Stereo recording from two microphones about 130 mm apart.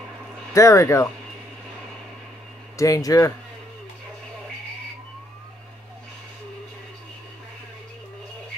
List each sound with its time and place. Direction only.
0.5 s speech: 25° left (ahead or behind)
2.8 s speech: 25° left (ahead or behind)